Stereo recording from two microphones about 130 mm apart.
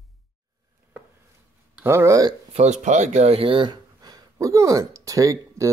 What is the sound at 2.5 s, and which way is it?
Speech, 60° right (ahead or behind).